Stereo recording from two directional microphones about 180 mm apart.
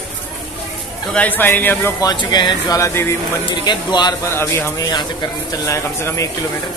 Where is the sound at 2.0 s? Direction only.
25° left (ahead or behind).